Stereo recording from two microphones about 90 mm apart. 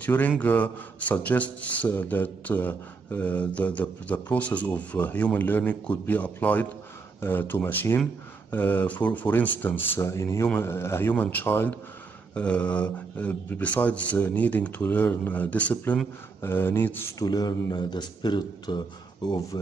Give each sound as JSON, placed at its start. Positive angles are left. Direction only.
{"t": 0.0, "sound": "a man's voice", "side_deg": 20}
{"t": 12.4, "sound": "a man's voice", "side_deg": 15}
{"t": 17.2, "sound": "speech", "side_deg": 50}